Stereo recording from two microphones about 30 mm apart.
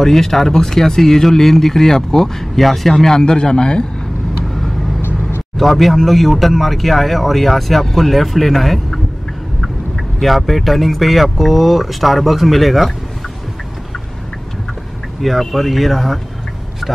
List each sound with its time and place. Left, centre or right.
0.0 s speech: centre; by 3.8 s left
5.6 s speech: centre
15.2 s speech: centre